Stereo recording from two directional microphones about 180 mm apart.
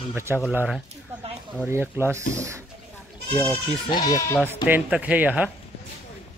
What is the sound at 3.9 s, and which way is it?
Speech, 20° left (ahead or behind).